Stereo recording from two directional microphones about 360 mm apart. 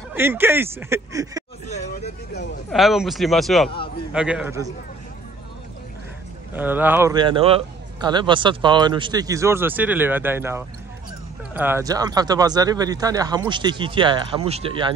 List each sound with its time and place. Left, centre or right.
0.1 s a man's voice: centre
1.7 s speech: centre
2.7 s speech: centre
6.5 s a man's voice: centre